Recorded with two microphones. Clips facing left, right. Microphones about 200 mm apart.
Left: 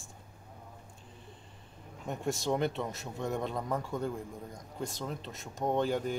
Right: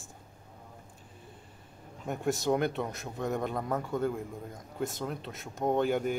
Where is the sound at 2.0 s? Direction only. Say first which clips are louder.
Right 3 dB; centre (ahead or behind).